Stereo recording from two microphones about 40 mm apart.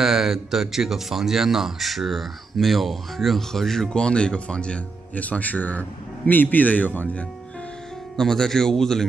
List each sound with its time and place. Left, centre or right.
0.0 s speech: centre
3.9 s speech: left
8.2 s speech: centre